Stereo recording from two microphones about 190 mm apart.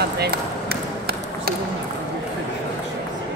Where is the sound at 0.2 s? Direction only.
55° right (ahead or behind).